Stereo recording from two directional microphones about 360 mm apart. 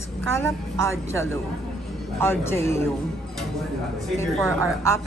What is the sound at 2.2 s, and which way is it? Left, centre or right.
Speech, centre.